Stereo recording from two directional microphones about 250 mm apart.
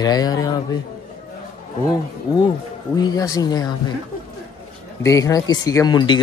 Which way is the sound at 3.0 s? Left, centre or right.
Centre.